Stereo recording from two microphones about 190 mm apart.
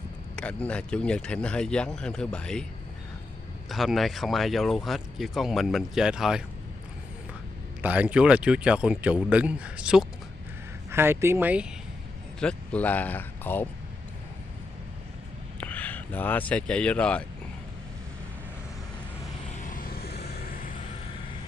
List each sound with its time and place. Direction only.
0.4 s speech: 5° left (ahead or behind)
3.7 s speech: centre (ahead or behind)
7.8 s speech: 5° right (ahead or behind)
12.4 s speech: 5° left (ahead or behind)
15.6 s speech: 10° left (ahead or behind)
19.7 s vehicle: 50° left (ahead or behind)